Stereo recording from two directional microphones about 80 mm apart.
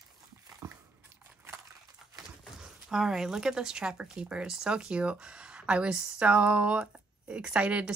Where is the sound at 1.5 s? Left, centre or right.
Right.